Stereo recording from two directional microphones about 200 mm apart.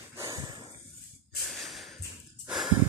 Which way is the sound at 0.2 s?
20° right (ahead or behind).